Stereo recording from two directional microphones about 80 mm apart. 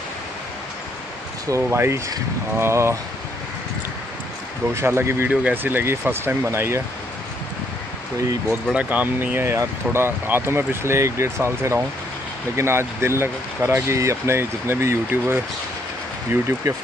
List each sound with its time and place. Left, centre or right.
1.5 s speech: right
4.7 s speech: right
8.7 s speech: right